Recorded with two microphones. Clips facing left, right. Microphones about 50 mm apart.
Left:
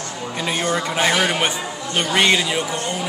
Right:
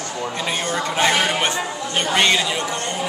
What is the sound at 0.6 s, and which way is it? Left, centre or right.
Speech, centre.